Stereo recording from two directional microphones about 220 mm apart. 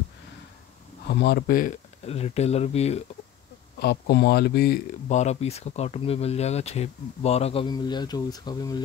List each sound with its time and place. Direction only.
1.0 s speech: 50° left (ahead or behind); by 3.0 s 30° left (ahead or behind)
3.8 s speech: 50° left (ahead or behind)
5.0 s speech: 30° left (ahead or behind)